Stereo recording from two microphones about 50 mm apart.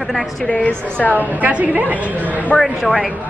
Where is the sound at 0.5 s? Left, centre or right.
Left.